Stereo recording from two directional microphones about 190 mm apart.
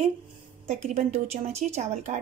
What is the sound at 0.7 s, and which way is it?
A woman's voice, 35° right (ahead or behind).